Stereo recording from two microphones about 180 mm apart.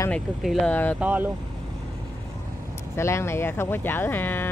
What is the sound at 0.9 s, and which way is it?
Speech, 10° right (ahead or behind).